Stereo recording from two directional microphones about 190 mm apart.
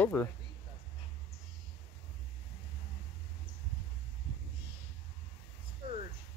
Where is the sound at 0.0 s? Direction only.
10° left (ahead or behind).